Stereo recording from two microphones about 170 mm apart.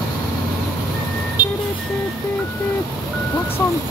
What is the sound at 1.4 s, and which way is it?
Vehicle, 25° left (ahead or behind).